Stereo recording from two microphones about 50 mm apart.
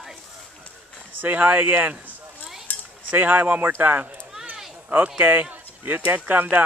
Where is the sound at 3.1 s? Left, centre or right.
Right.